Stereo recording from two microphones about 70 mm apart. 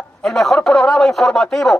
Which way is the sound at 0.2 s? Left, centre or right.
Centre.